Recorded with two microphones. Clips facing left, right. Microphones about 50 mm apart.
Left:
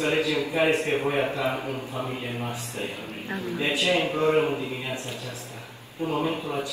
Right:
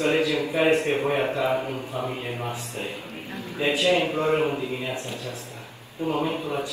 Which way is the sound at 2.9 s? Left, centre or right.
Left.